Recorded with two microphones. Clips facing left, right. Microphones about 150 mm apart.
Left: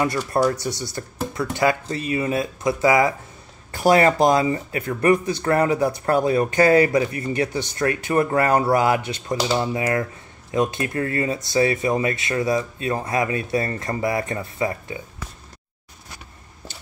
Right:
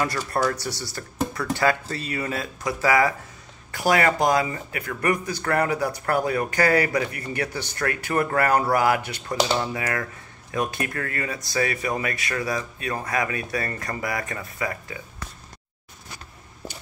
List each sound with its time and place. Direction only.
0.0 s speech: 20° left (ahead or behind)